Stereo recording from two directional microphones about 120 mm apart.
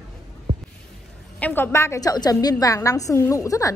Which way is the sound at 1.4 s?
15° left (ahead or behind).